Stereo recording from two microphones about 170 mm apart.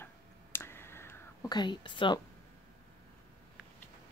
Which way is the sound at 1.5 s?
25° left (ahead or behind).